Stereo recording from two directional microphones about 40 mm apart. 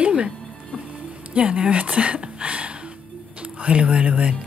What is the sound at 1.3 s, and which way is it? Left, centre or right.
A woman's voice, right.